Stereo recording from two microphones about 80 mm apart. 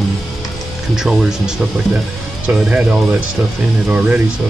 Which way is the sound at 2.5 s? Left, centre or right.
Centre.